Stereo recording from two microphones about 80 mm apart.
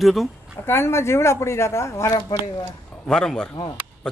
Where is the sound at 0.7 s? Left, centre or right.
Left.